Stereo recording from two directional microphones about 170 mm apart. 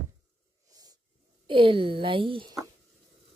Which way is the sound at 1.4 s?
30° right (ahead or behind).